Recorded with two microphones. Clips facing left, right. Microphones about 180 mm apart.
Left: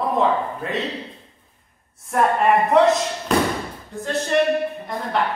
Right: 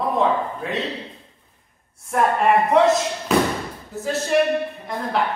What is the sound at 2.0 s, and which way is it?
Speech, centre (ahead or behind).